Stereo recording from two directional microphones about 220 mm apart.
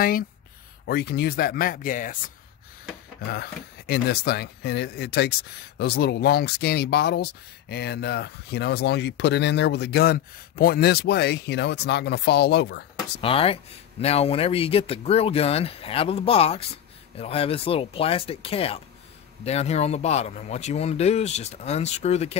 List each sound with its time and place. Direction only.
0.8 s speech: 45° left (ahead or behind)
13.2 s speech: 25° left (ahead or behind)